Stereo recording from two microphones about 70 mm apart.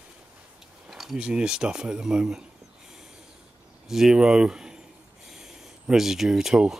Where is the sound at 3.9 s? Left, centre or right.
Centre.